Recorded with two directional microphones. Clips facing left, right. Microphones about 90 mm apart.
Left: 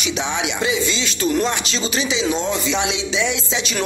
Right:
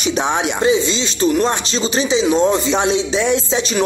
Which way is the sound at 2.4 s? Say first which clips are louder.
Right 6 dB; 40° right (ahead or behind).